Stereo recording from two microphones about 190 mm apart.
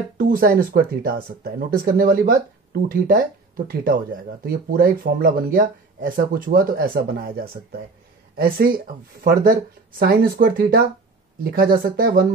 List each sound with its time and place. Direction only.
0.2 s speech: 50° right (ahead or behind)